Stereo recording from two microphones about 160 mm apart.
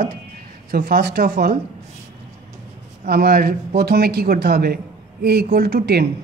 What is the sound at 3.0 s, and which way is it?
A man's voice, 75° right (ahead or behind).